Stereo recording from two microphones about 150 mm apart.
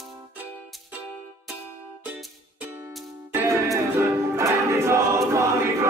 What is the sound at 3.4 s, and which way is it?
Music, 20° right (ahead or behind).